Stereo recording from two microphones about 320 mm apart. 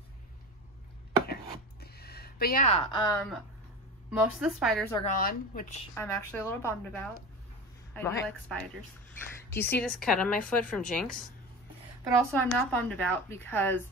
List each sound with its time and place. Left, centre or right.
1.2 s a sound: left; by 3.3 s centre
4.4 s a woman's voice: centre
5.0 s a woman's voice: left
5.9 s a woman's voice: centre
12.3 s a woman's voice: centre